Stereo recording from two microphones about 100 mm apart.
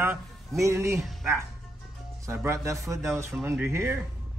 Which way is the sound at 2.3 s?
25° right (ahead or behind).